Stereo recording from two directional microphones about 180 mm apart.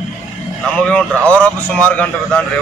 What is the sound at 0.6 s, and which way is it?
A man's voice, 5° left (ahead or behind).